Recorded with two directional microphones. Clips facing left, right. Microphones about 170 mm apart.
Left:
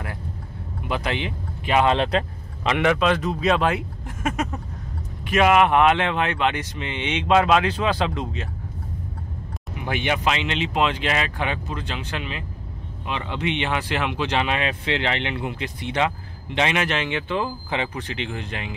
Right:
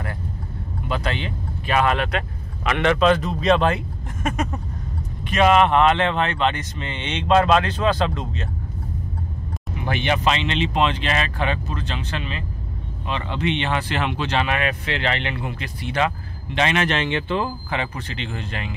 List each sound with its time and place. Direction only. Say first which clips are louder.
0.8 s speech: even; 15° left (ahead or behind)
2.8 s speech: right 3 dB; 5° left (ahead or behind)
9.8 s speech: right 2 dB; 10° left (ahead or behind)